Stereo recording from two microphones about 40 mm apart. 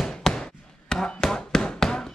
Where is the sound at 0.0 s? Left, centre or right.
Centre.